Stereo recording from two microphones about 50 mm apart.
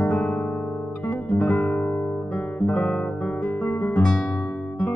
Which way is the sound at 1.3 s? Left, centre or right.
Left.